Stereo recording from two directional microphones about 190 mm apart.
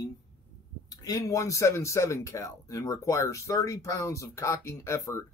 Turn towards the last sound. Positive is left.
turn(degrees=15)  # may be behind; listen again after turning